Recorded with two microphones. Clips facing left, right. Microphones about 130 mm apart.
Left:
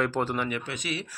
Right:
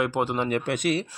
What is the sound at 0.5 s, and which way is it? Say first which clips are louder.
Speech: right 8 dB; 50° right (ahead or behind).